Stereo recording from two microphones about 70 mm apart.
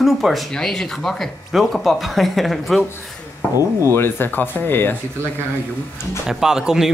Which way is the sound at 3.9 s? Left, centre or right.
Left.